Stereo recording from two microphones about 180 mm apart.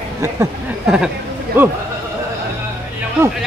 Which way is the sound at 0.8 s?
5° right (ahead or behind).